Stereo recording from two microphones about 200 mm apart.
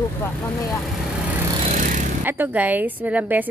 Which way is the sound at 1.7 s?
40° right (ahead or behind).